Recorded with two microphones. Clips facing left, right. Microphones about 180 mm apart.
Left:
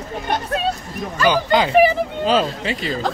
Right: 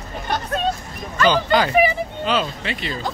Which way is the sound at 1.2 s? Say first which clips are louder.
Left 1 dB; 15° left (ahead or behind).